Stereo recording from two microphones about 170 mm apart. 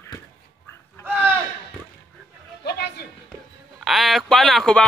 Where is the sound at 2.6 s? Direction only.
75° left (ahead or behind).